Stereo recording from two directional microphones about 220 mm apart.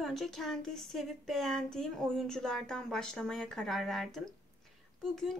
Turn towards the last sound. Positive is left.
turn(degrees=0)  # may be behind; listen again after turning